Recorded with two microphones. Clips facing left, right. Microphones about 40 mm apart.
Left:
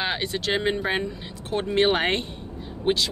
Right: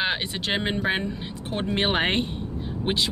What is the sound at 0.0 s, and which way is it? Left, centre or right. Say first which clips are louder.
Speech: even; centre.